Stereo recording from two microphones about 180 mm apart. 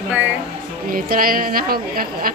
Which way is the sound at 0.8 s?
55° right (ahead or behind).